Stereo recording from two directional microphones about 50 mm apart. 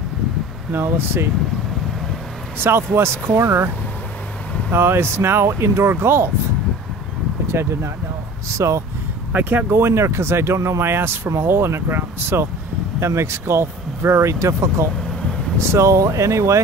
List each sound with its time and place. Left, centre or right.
0.7 s speech: right
2.6 s speech: right
4.7 s speech: right
7.4 s speech: right
8.5 s speech: right
9.3 s speech: right
9.7 s speech: right
13.0 s speech: right
15.0 s vehicle: centre
15.6 s speech: right